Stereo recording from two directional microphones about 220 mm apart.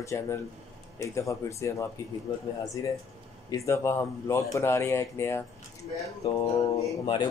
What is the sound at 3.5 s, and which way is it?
Speech, 15° left (ahead or behind).